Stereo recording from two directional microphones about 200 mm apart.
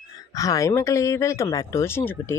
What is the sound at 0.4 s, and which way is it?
Speech, 15° left (ahead or behind).